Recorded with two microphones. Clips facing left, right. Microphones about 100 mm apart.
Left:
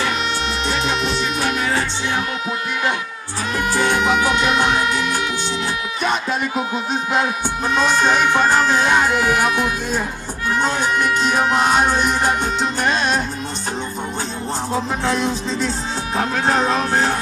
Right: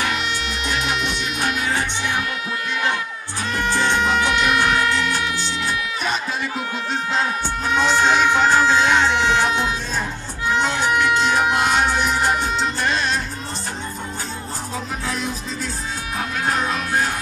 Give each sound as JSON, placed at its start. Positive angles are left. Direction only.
{"t": 0.1, "sound": "music", "side_deg": 35}
{"t": 3.6, "sound": "music", "side_deg": 10}
{"t": 6.5, "sound": "speech", "side_deg": 20}
{"t": 9.1, "sound": "music", "side_deg": -25}
{"t": 10.9, "sound": "speech", "side_deg": -20}
{"t": 11.6, "sound": "speech", "side_deg": 20}
{"t": 16.2, "sound": "speech", "side_deg": 30}